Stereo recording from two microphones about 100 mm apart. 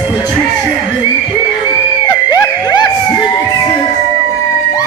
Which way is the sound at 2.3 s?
40° left (ahead or behind).